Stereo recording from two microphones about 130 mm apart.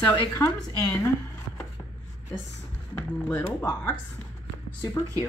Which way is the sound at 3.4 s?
30° left (ahead or behind).